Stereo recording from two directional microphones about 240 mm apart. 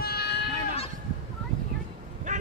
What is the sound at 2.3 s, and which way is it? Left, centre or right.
Vehicle, right.